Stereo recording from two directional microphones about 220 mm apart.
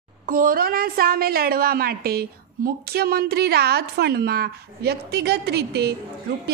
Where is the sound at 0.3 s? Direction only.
40° right (ahead or behind).